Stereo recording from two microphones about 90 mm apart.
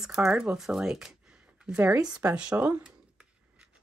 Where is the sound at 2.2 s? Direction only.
15° right (ahead or behind).